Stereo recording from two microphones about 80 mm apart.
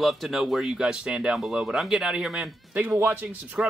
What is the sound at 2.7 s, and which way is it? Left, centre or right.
Speech, centre.